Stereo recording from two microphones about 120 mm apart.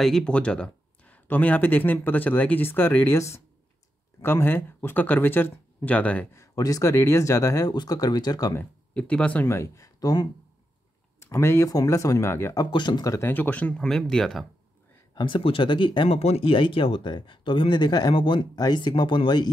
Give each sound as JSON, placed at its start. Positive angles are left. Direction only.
{"t": 0.0, "sound": "speech", "side_deg": 5}
{"t": 6.3, "sound": "speech", "side_deg": 30}
{"t": 8.5, "sound": "speech", "side_deg": 10}
{"t": 12.7, "sound": "speech", "side_deg": 35}
{"t": 13.1, "sound": "speech", "side_deg": 20}
{"t": 15.1, "sound": "speech", "side_deg": 45}